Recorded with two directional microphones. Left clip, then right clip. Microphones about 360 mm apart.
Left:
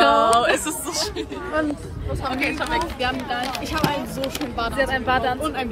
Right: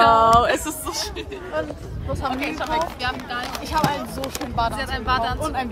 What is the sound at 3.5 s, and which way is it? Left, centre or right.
Speech, centre.